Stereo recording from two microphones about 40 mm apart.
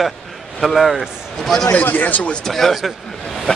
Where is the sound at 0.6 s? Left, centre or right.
Centre.